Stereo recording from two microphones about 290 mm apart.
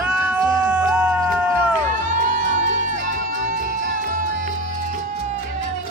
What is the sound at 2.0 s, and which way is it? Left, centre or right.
Music, right.